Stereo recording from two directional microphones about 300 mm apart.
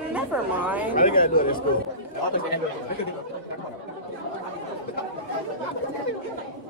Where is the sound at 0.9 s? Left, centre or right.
Left.